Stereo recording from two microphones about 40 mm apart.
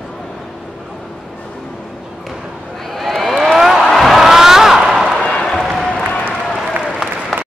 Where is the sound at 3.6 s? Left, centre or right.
Centre.